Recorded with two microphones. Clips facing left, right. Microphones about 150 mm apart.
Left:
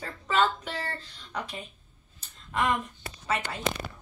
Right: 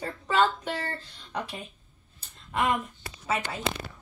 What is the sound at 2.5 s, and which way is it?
Speech, 5° right (ahead or behind).